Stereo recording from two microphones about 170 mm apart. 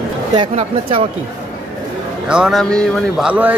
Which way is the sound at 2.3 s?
Centre (ahead or behind).